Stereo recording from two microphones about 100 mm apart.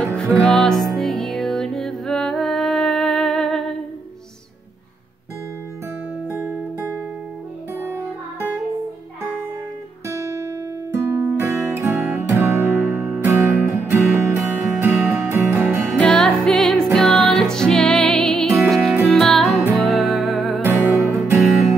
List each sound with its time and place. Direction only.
0.0 s music: 5° left (ahead or behind)
6.2 s music: 20° right (ahead or behind)
10.0 s guitar: 30° right (ahead or behind)
10.9 s music: 25° right (ahead or behind)
16.0 s music: 10° left (ahead or behind)
20.6 s music: 20° right (ahead or behind)